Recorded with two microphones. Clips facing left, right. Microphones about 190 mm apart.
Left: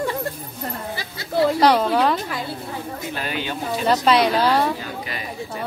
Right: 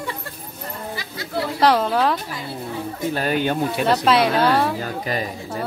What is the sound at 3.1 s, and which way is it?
Speech, 45° right (ahead or behind).